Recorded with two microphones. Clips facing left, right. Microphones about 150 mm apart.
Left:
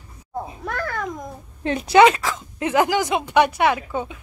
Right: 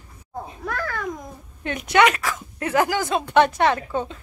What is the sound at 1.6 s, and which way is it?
Speech, 30° left (ahead or behind).